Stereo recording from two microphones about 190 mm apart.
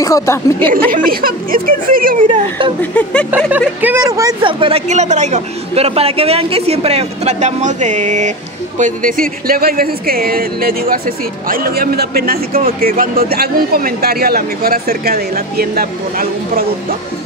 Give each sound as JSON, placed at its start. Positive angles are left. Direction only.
{"t": 0.0, "sound": "speech", "side_deg": 15}
{"t": 0.8, "sound": "speech", "side_deg": -50}
{"t": 2.8, "sound": "speech", "side_deg": 5}
{"t": 3.3, "sound": "a woman's voice", "side_deg": -10}